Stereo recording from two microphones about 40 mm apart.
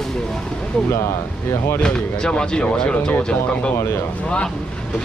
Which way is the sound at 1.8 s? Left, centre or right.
Left.